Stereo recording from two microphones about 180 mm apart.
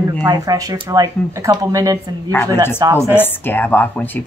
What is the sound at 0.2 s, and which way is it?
Speech, 20° right (ahead or behind).